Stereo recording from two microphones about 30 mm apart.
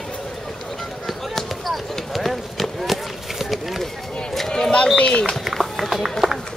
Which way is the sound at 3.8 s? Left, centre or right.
Centre.